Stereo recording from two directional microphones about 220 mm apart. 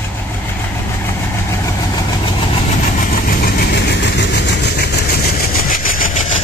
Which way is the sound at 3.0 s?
45° left (ahead or behind).